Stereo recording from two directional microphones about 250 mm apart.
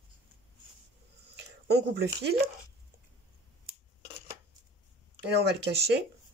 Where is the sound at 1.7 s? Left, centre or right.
Right.